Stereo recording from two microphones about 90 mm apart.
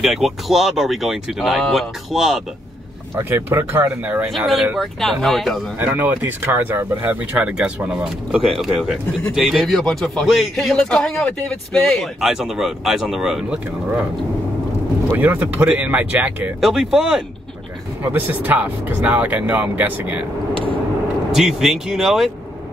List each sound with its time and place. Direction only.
0.0 s speech: 5° right (ahead or behind)
3.2 s speech: 25° right (ahead or behind)
4.3 s speech: centre (ahead or behind)
5.8 s speech: 20° right (ahead or behind); by 13.6 s 5° right (ahead or behind)
15.0 s speech: 20° right (ahead or behind)
16.6 s speech: 5° right (ahead or behind)
18.0 s speech: 20° right (ahead or behind)
21.4 s speech: 5° right (ahead or behind)